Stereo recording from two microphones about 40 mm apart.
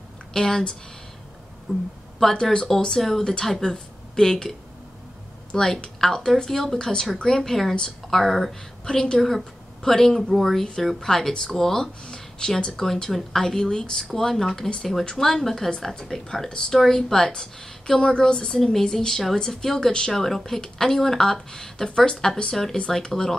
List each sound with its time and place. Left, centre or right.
0.3 s speech: centre
1.7 s speech: centre
2.2 s speech: centre
8.8 s a woman's voice: centre
9.8 s speech: centre
12.8 s speech: centre